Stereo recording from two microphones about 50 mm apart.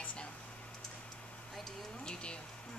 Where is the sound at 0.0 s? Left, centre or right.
Left.